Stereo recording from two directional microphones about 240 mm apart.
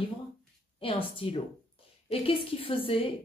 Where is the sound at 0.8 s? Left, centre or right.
Left.